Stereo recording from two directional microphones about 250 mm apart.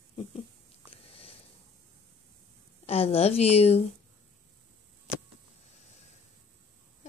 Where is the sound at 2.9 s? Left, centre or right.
Left.